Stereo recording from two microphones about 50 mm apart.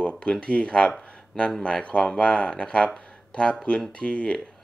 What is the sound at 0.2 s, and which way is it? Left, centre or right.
Speech, left.